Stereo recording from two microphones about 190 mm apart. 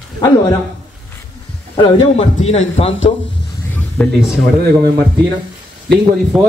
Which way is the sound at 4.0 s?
Centre (ahead or behind).